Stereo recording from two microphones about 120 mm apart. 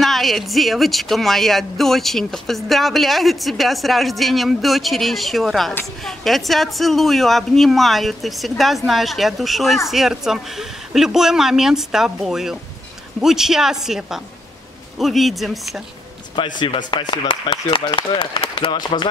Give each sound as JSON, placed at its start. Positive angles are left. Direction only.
{"t": 0.0, "sound": "speech", "side_deg": 0}
{"t": 16.5, "sound": "speech", "side_deg": 40}